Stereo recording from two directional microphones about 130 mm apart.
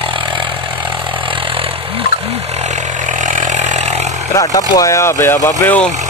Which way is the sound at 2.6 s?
65° right (ahead or behind).